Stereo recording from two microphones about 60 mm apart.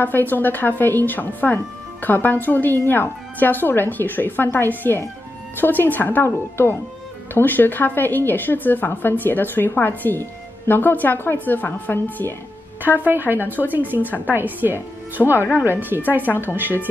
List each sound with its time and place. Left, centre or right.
0.0 s speech: left
13.3 s speech: right
14.0 s a woman's voice: left
14.3 s speech: right
15.3 s speech: left
15.8 s speech: right
16.3 s speech: left
16.5 s speech: right